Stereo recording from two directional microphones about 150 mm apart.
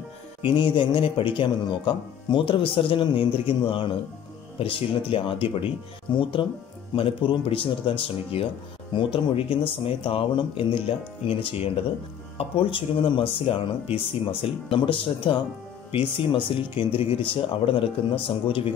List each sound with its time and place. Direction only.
0.4 s speech: 35° left (ahead or behind)